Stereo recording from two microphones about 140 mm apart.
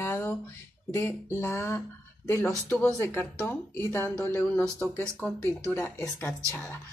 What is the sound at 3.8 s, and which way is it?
Speech, 20° left (ahead or behind).